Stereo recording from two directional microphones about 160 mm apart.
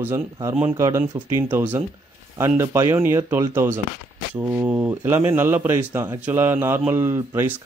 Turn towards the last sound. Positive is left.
turn(degrees=-15)  # may be behind; listen again after turning